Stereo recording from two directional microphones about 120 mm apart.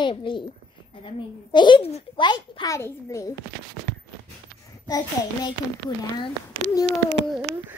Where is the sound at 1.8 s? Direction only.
60° left (ahead or behind).